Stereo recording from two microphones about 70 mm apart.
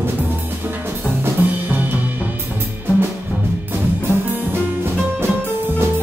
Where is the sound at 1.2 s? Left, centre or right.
Right.